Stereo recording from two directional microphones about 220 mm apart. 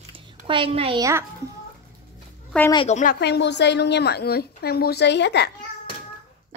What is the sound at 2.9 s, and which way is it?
A woman's voice, 45° left (ahead or behind).